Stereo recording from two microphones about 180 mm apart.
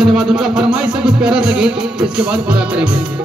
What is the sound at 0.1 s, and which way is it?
Music, 5° right (ahead or behind).